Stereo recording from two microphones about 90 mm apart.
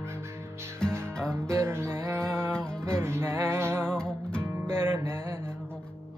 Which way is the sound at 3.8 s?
10° left (ahead or behind).